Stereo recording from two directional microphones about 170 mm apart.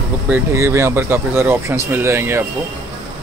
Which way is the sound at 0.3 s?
15° right (ahead or behind).